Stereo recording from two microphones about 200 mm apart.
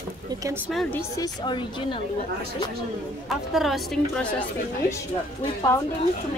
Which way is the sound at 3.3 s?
Centre (ahead or behind).